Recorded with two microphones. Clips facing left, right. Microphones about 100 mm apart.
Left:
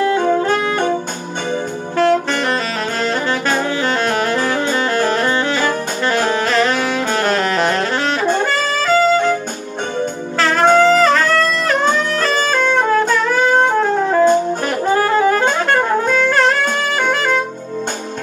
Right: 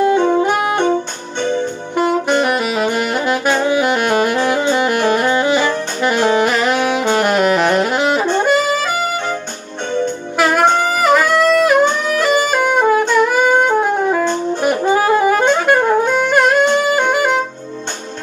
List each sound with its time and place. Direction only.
0.0 s saxophone: 20° right (ahead or behind)
2.0 s saxophone: 15° right (ahead or behind)
10.4 s music: 15° right (ahead or behind)
13.1 s wind instrument: 15° right (ahead or behind)
14.6 s saxophone: 15° right (ahead or behind)